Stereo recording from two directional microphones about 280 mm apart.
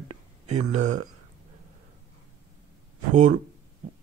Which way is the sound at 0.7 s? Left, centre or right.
Right.